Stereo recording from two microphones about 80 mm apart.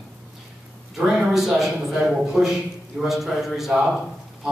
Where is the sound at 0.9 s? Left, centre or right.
Centre.